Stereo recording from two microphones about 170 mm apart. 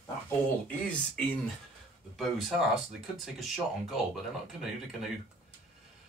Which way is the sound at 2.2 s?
Centre (ahead or behind).